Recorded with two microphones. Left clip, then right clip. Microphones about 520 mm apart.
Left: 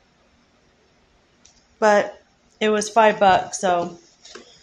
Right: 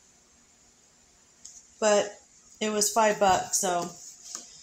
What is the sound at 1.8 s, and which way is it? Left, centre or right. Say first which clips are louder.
Speech: left 7 dB; right.